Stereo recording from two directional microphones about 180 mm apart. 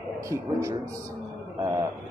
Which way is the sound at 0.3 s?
15° right (ahead or behind).